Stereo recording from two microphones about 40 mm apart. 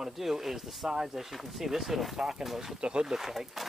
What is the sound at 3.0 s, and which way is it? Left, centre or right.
Speech, centre.